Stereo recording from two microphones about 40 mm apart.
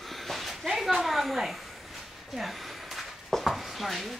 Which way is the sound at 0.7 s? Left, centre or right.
Centre.